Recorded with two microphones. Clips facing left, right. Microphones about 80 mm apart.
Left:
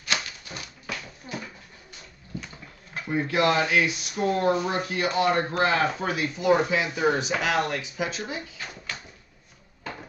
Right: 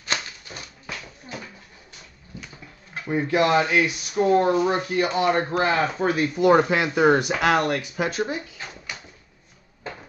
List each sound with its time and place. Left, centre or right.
2.9 s speech: right
6.3 s speech: right